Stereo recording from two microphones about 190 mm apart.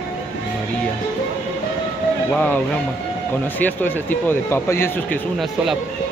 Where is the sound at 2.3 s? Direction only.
10° left (ahead or behind).